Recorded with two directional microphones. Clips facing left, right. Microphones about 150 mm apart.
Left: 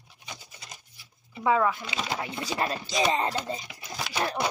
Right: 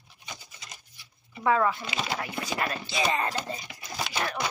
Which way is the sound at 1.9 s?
25° left (ahead or behind).